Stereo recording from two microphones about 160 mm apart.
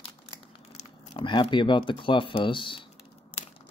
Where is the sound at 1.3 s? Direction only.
30° left (ahead or behind).